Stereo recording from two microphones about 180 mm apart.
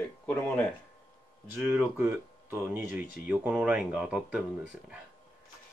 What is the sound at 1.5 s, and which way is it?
Speech, 10° right (ahead or behind).